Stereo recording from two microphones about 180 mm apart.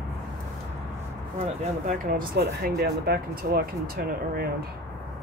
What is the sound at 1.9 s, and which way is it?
Speech, 50° right (ahead or behind).